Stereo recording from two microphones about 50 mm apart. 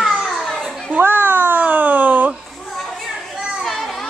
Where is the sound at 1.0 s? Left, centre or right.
Right.